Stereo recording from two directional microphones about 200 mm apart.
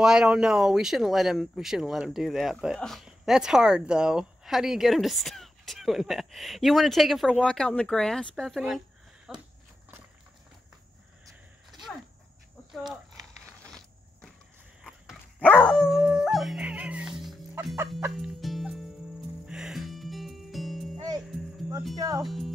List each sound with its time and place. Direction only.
0.0 s speech: 5° right (ahead or behind)
14.8 s dog: centre (ahead or behind)
18.1 s music: centre (ahead or behind)
21.9 s speech: 15° right (ahead or behind)
22.2 s speech: centre (ahead or behind)